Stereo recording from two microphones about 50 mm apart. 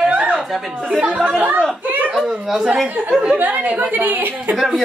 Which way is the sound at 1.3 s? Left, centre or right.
Right.